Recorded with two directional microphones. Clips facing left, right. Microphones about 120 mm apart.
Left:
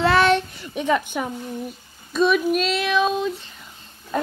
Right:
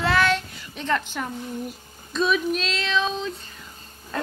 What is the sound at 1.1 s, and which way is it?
Speech, 10° left (ahead or behind).